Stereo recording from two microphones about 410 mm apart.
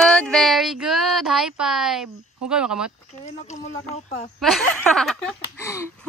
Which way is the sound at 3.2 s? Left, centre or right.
Centre.